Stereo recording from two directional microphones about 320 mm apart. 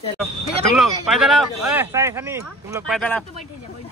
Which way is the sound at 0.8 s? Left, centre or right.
Centre.